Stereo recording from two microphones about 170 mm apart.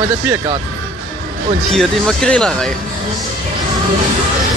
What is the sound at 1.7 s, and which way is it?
Speech, centre (ahead or behind).